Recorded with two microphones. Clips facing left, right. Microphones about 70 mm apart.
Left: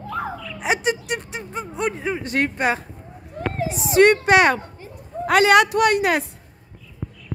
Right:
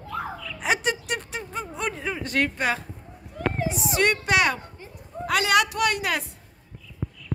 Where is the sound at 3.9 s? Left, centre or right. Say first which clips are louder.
Left 9 dB; left.